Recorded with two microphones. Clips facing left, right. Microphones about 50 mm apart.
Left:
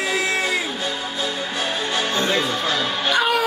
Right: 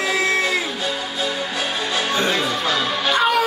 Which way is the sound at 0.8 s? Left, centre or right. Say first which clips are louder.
Right 1 dB; right.